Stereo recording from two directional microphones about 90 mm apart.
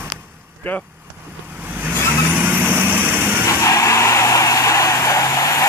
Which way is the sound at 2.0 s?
25° left (ahead or behind).